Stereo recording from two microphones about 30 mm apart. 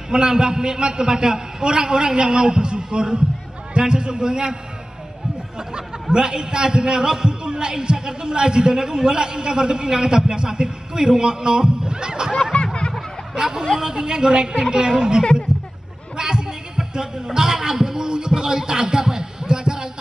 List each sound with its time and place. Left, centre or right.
0.1 s a man's voice: right
5.8 s a man's voice: right
15.5 s a sound: right
16.2 s music: right